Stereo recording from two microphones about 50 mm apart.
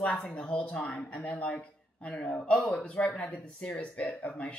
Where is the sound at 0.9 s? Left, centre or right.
Centre.